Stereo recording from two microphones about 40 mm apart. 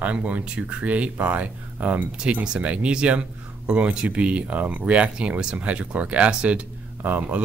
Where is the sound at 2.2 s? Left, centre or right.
Right.